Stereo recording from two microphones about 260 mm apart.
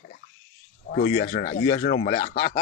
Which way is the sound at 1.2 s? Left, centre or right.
Left.